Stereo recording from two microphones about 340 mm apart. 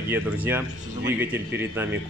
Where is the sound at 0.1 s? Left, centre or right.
Centre.